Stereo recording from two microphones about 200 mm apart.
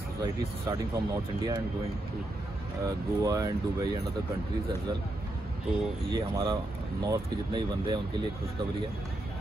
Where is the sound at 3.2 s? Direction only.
15° right (ahead or behind).